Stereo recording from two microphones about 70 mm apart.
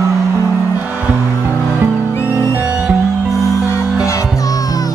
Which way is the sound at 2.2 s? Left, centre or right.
Right.